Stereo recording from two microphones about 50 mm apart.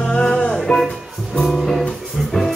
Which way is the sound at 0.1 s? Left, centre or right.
Left.